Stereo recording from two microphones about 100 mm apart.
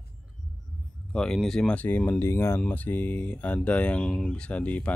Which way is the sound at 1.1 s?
5° left (ahead or behind).